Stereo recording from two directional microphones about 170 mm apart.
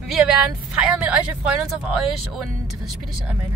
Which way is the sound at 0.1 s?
5° right (ahead or behind).